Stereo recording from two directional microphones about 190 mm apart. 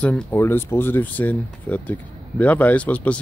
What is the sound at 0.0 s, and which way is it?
Speech, 10° left (ahead or behind).